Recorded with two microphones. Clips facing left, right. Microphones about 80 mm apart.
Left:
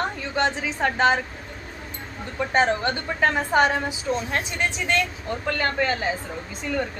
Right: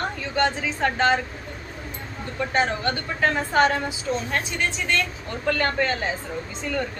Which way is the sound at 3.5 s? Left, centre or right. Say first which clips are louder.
Right 1 dB; centre.